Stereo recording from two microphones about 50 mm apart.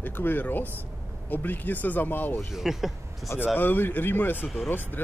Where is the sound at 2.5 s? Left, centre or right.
Centre.